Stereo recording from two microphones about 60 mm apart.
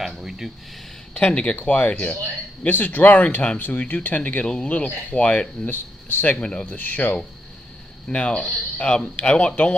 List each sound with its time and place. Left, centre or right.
0.0 s a sound: centre
1.1 s speech: centre
5.7 s speech: left
6.3 s speech: centre
8.1 s speech: left